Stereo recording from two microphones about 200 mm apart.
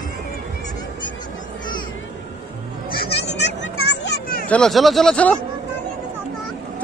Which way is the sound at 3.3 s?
60° left (ahead or behind).